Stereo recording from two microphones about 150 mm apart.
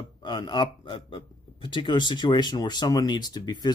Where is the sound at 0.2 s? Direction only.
30° left (ahead or behind).